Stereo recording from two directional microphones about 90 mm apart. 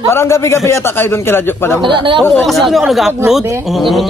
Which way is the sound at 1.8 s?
65° right (ahead or behind).